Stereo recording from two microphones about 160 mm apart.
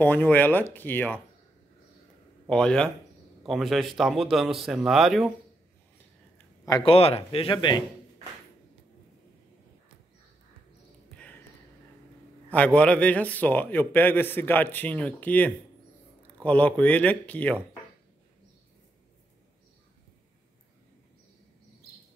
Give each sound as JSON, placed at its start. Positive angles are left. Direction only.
{"t": 0.0, "sound": "a man's voice", "side_deg": 10}
{"t": 2.4, "sound": "a man's voice", "side_deg": 5}
{"t": 6.3, "sound": "a sound", "side_deg": 20}
{"t": 6.8, "sound": "speech", "side_deg": 35}
{"t": 12.4, "sound": "a man's voice", "side_deg": 10}